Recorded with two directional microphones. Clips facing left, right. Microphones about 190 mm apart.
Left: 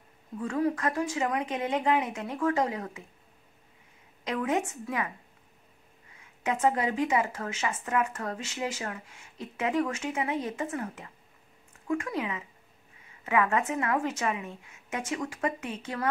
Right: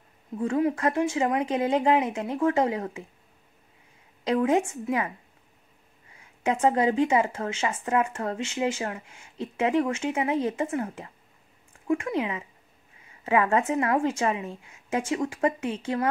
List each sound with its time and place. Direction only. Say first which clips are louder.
0.4 s speech: right 4 dB; 25° right (ahead or behind)
4.2 s speech: right 6 dB; 30° right (ahead or behind)
6.4 s speech: right 4 dB; 30° right (ahead or behind)